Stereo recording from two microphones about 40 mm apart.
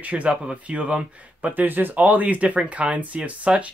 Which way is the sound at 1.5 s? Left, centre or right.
Right.